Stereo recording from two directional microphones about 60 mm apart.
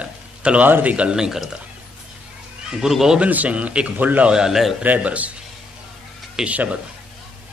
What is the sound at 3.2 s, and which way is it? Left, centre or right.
A man's voice, right.